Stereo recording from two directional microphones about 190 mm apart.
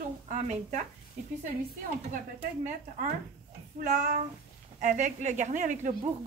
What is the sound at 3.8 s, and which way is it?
A woman's voice, 40° right (ahead or behind).